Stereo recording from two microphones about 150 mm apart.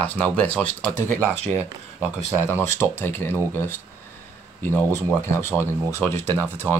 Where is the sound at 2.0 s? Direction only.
15° left (ahead or behind).